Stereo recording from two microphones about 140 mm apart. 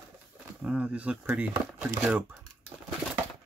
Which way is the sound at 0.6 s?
10° right (ahead or behind).